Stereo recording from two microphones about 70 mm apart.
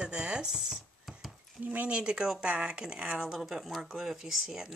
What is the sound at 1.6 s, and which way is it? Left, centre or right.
Speech, right.